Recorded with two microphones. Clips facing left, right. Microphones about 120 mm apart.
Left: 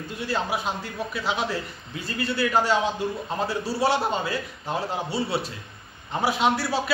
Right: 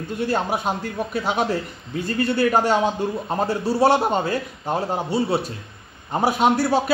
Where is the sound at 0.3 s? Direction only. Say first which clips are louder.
Right 3 dB; 50° right (ahead or behind).